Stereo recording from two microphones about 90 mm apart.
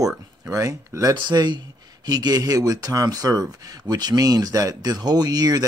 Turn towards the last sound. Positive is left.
turn(degrees=-45)  # may be behind; listen again after turning